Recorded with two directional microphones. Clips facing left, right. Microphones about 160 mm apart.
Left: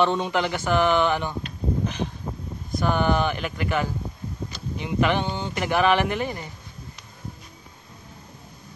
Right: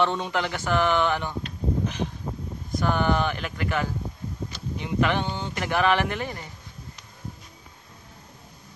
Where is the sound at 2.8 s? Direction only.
15° left (ahead or behind).